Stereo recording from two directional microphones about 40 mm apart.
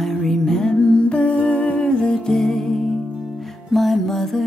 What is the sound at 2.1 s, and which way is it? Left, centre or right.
Music, centre.